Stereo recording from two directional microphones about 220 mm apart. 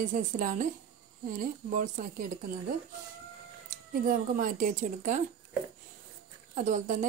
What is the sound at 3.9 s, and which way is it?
A woman's voice, 40° right (ahead or behind).